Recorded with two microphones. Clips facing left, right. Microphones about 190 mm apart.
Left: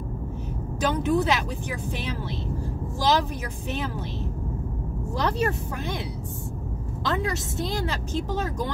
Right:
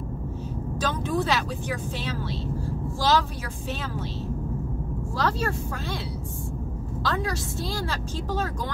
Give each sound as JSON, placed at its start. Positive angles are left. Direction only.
{"t": 0.7, "sound": "speech", "side_deg": 20}
{"t": 5.1, "sound": "speech", "side_deg": 20}
{"t": 7.0, "sound": "speech", "side_deg": 20}